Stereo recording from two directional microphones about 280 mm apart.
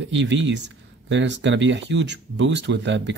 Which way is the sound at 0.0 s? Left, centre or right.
Right.